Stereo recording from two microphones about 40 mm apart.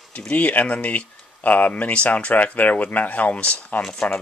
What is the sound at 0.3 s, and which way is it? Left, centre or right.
Speech, left.